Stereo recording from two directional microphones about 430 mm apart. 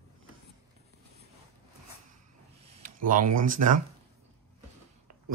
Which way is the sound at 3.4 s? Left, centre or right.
Centre.